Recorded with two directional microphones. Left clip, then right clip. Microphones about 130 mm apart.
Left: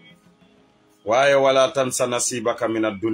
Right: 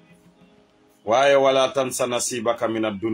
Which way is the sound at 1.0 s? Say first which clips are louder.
Even; 20° left (ahead or behind).